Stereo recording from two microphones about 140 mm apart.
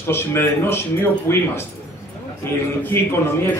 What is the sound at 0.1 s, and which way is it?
A man's voice, 15° left (ahead or behind).